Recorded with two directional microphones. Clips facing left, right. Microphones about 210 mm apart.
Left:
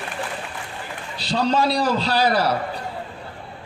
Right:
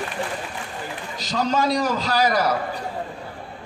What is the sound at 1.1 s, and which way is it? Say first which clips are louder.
A man's voice: left 2 dB; 30° left (ahead or behind).